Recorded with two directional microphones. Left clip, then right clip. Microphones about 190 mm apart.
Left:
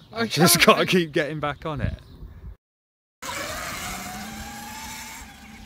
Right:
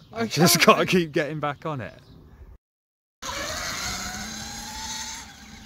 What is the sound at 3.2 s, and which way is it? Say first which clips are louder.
Vehicle: even; 10° left (ahead or behind).